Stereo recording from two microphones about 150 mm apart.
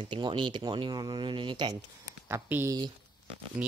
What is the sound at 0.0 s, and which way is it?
Speech, 30° right (ahead or behind).